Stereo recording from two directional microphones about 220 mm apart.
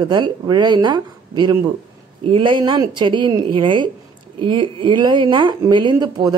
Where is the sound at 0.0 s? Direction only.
20° right (ahead or behind).